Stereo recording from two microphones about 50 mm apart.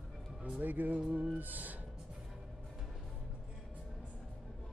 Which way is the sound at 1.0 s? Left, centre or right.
Right.